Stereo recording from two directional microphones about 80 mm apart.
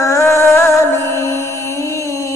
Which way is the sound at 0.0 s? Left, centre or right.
Left.